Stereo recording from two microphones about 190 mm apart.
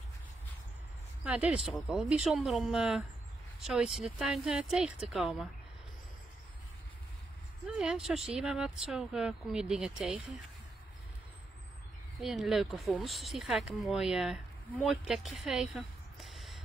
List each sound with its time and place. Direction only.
1.2 s speech: 5° right (ahead or behind)
7.6 s speech: 5° right (ahead or behind)
12.2 s speech: centre (ahead or behind)
15.4 s a sound: centre (ahead or behind)